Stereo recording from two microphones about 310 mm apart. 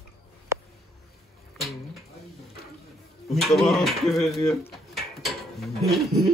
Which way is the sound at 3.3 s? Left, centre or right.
Centre.